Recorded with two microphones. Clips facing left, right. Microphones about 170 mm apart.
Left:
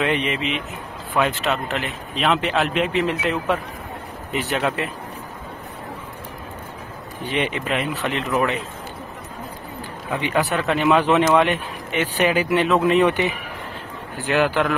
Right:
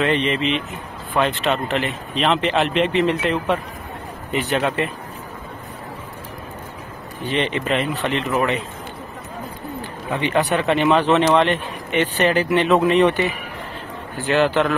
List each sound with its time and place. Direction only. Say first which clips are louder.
0.0 s speech: right 3 dB; 10° left (ahead or behind)
7.2 s speech: right 2 dB; 10° left (ahead or behind)
10.1 s speech: right 2 dB; 5° left (ahead or behind)
14.2 s speech: right 2 dB; 10° left (ahead or behind)